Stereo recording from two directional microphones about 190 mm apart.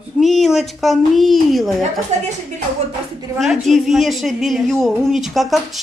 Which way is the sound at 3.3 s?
Centre (ahead or behind).